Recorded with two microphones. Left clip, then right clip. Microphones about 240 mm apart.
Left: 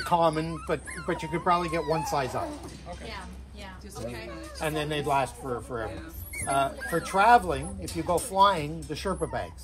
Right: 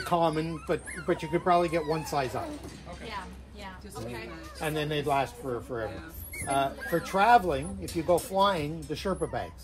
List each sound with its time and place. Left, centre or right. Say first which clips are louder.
0.1 s speech: left 2 dB; left
4.6 s speech: left 1 dB; left
6.5 s speech: left 1 dB; left